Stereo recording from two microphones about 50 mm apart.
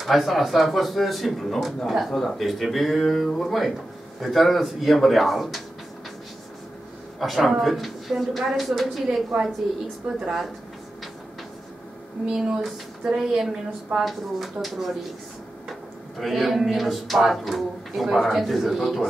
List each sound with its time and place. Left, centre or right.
0.0 s speech: centre
4.2 s speech: centre
7.2 s speech: centre
9.3 s a woman's voice: centre
12.3 s a woman's voice: centre
16.2 s speech: centre